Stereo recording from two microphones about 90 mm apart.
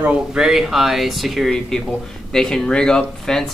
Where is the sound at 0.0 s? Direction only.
5° right (ahead or behind).